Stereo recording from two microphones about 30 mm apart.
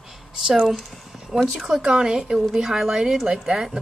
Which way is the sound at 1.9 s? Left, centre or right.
Right.